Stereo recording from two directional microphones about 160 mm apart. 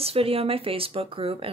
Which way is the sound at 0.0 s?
35° right (ahead or behind).